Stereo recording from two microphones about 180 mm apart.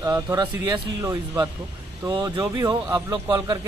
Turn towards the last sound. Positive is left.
turn(degrees=-20)  # may be behind; listen again after turning